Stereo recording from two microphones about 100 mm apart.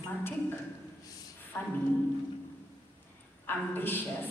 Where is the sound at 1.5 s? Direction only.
15° left (ahead or behind).